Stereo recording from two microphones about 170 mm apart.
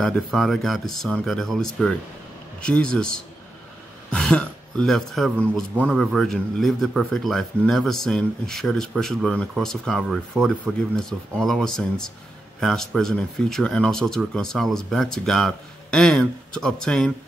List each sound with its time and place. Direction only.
0.0 s speech: centre (ahead or behind)